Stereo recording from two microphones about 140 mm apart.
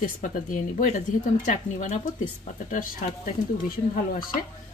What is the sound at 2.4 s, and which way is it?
Speech, 75° left (ahead or behind).